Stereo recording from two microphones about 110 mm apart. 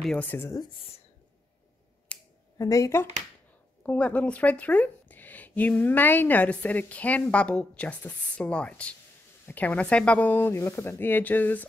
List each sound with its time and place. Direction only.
0.0 s speech: 5° left (ahead or behind)
0.3 s speech: 20° left (ahead or behind)
2.1 s finger snapping: 10° left (ahead or behind)
2.6 s speech: 30° left (ahead or behind)
3.8 s a woman's voice: 15° left (ahead or behind)